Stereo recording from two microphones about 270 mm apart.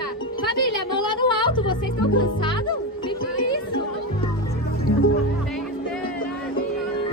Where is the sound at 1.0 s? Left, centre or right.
Centre.